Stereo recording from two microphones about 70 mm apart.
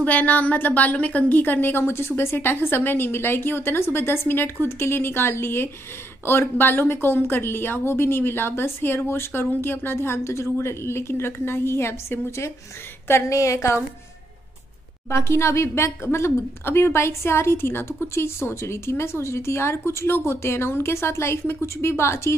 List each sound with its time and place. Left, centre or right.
0.0 s a woman's voice: left
15.0 s a woman's voice: left